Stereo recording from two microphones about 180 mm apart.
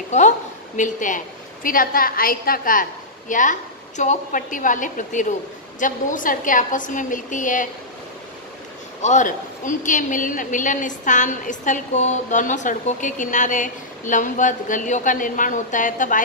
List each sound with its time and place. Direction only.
0.7 s a woman's voice: 45° left (ahead or behind)
9.0 s a woman's voice: 45° left (ahead or behind)